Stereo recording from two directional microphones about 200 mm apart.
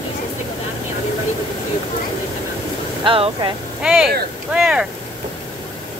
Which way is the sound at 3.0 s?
25° right (ahead or behind).